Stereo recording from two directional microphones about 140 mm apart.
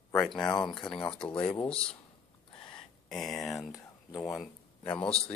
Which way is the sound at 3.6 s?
25° left (ahead or behind).